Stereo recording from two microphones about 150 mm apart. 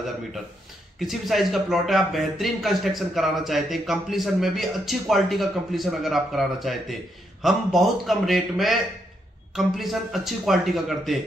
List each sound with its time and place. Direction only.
0.9 s speech: centre (ahead or behind)